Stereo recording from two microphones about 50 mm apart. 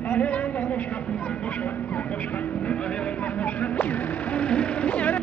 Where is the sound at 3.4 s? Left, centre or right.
Left.